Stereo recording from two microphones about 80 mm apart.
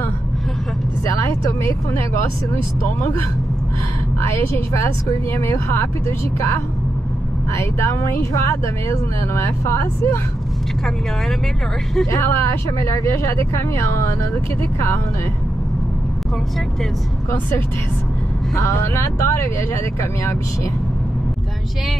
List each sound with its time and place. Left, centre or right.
1.0 s speech: left
4.2 s speech: left
12.1 s speech: left
18.6 s speech: left